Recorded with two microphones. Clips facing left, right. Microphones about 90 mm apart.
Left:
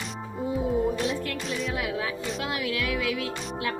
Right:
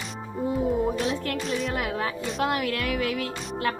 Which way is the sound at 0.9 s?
Centre (ahead or behind).